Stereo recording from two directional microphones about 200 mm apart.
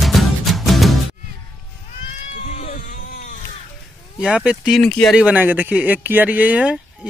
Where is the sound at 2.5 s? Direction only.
40° left (ahead or behind).